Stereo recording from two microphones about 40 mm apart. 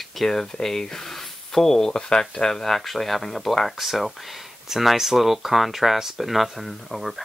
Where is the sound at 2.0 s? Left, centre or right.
Left.